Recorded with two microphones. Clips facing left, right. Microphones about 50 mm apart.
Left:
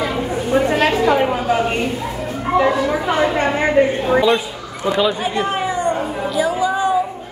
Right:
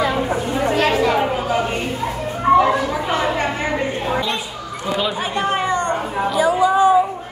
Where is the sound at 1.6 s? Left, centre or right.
Centre.